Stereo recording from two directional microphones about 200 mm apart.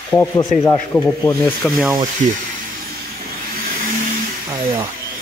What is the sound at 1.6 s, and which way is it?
Speech, centre (ahead or behind).